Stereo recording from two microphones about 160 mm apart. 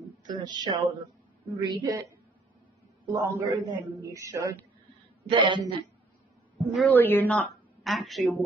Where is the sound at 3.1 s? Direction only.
20° right (ahead or behind).